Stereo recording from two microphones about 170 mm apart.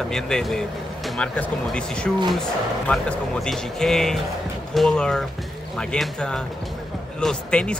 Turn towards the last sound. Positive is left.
turn(degrees=5)  # may be behind; listen again after turning